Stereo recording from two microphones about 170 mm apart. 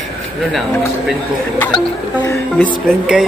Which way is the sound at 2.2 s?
15° left (ahead or behind).